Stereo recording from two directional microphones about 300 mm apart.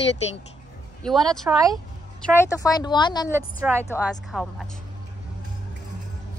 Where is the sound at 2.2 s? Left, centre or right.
Centre.